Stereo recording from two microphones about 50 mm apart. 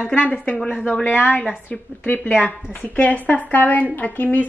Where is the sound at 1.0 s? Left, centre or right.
Left.